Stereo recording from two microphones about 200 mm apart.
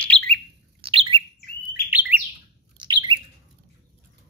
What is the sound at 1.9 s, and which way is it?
Bird, 10° right (ahead or behind).